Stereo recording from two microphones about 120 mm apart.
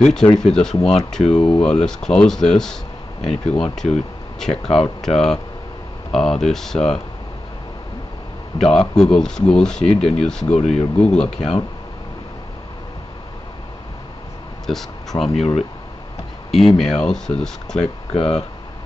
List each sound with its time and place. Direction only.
0.0 s speech: 5° left (ahead or behind)
8.5 s speech: 5° left (ahead or behind)
10.5 s speech: 65° left (ahead or behind)
11.0 s speech: 5° left (ahead or behind)
14.7 s speech: 5° left (ahead or behind)
16.5 s speech: centre (ahead or behind)
18.1 s speech: 55° left (ahead or behind)